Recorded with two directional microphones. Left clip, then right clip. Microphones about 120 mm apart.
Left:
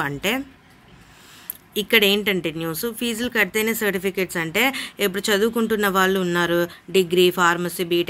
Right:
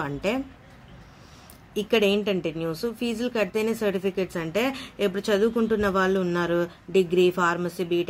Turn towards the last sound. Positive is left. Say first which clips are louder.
# left 4 dB
turn(degrees=15)  # may be behind; listen again after turning